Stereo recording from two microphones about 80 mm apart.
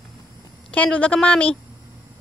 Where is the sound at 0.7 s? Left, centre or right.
Centre.